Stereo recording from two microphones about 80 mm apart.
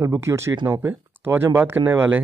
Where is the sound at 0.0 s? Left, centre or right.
Right.